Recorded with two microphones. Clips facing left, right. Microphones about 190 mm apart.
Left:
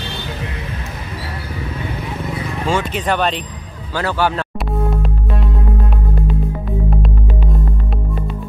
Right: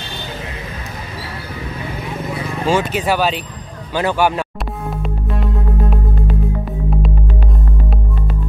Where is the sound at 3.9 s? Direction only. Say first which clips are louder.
Right 2 dB; 15° right (ahead or behind).